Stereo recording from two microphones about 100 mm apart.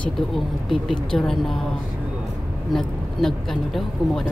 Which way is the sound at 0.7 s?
Centre (ahead or behind).